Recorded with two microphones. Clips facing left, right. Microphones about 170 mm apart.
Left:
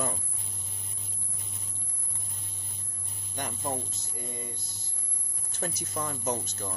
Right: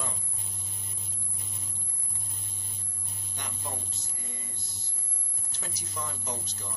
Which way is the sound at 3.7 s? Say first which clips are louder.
Left 8 dB; 50° left (ahead or behind).